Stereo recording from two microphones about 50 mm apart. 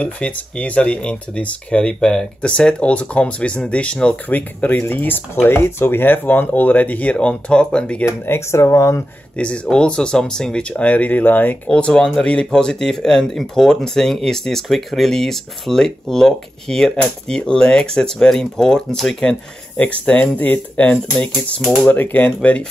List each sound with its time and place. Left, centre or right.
0.0 s speech: left
4.3 s speech: left
8.0 s speech: left
9.4 s speech: left
11.7 s speech: centre
19.8 s speech: left